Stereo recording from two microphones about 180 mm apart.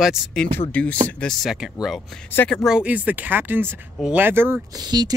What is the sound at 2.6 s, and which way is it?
Speech, 5° right (ahead or behind).